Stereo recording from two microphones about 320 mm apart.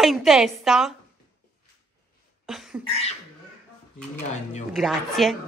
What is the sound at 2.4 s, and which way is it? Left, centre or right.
Cough, centre.